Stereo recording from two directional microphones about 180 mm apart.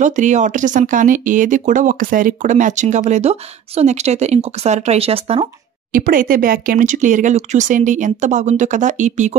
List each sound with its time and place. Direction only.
0.0 s speech: 45° right (ahead or behind)
5.9 s speech: 50° right (ahead or behind)